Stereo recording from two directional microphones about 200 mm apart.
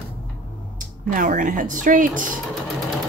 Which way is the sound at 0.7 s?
40° right (ahead or behind).